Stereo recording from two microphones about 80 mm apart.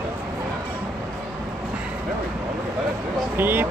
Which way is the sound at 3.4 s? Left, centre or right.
Right.